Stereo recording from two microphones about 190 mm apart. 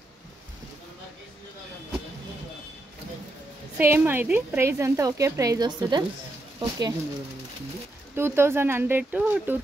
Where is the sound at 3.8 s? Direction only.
10° right (ahead or behind).